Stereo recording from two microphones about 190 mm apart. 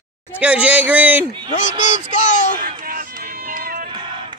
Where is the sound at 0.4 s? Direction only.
5° right (ahead or behind).